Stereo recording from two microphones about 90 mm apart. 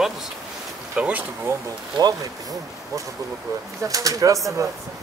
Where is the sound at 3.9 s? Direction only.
40° right (ahead or behind).